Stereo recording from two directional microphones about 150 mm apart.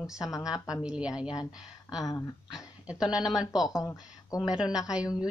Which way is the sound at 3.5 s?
25° left (ahead or behind).